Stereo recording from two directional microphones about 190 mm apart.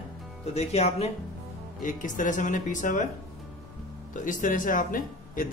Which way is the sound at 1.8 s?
45° left (ahead or behind).